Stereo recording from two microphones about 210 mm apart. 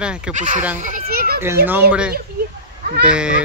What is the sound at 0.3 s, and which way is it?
Speech, 35° right (ahead or behind).